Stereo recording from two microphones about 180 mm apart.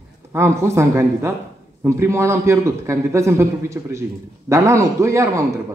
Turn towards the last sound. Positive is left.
turn(degrees=-15)  # may be behind; listen again after turning